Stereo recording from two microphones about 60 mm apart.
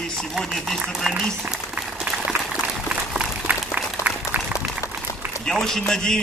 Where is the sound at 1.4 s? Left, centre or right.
Right.